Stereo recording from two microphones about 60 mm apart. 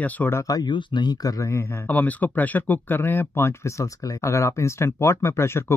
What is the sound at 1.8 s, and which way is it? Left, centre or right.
Speech, left.